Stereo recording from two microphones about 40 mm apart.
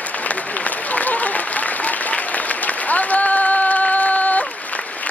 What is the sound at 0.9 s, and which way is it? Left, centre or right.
Applause, left.